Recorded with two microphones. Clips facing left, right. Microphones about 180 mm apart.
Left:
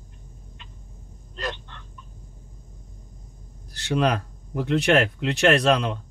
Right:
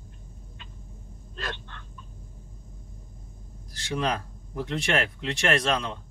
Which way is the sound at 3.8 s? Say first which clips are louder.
Left 6 dB; 65° left (ahead or behind).